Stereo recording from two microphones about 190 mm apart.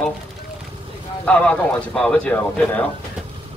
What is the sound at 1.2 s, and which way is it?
A man's voice, 5° left (ahead or behind).